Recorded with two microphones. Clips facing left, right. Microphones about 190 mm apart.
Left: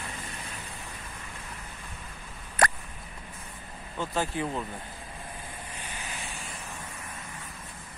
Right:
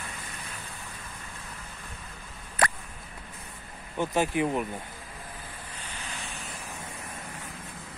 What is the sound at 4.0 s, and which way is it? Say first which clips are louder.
Speech: right 4 dB; 15° right (ahead or behind).